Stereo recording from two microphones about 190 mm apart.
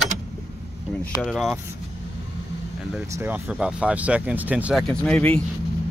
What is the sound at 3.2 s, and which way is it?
Speech, 10° right (ahead or behind).